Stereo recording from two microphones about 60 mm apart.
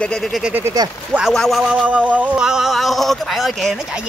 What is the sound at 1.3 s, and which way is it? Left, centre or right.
Speech, centre.